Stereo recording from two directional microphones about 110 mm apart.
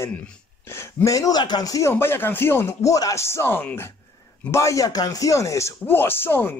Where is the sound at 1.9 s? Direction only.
20° left (ahead or behind).